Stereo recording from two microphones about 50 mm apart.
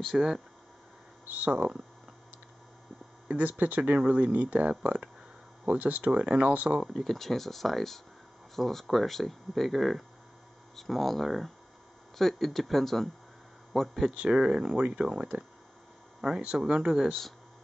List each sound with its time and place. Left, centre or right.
0.1 s speech: centre
1.3 s speech: right
3.3 s speech: right
6.9 s speech: centre
14.1 s speech: centre
15.3 s speech: right; by 17.1 s centre